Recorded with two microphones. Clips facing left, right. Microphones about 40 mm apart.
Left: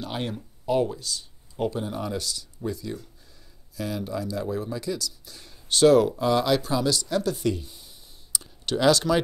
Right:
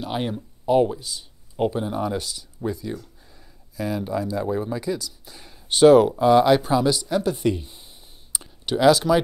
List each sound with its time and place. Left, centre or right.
0.0 s speech: centre
8.6 s speech: centre